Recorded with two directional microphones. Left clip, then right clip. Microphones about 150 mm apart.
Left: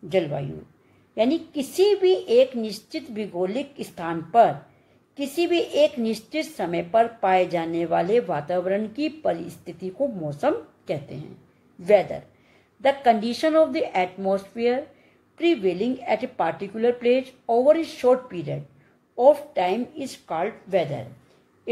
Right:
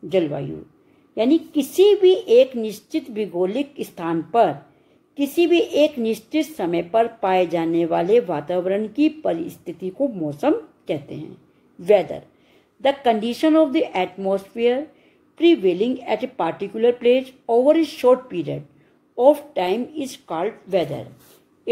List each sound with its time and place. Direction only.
0.1 s a woman's voice: 35° right (ahead or behind)